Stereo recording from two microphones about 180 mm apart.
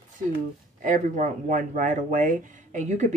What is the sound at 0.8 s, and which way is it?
Speech, 45° right (ahead or behind).